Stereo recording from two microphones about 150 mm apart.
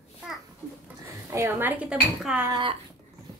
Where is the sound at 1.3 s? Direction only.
15° right (ahead or behind).